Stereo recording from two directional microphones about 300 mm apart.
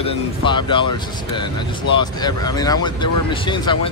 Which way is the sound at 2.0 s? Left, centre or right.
Centre.